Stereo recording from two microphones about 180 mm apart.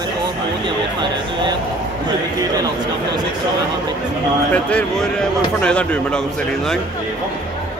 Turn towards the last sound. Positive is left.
turn(degrees=5)  # may be behind; listen again after turning